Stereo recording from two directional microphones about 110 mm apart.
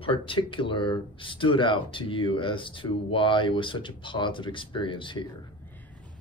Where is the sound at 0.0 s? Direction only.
50° left (ahead or behind).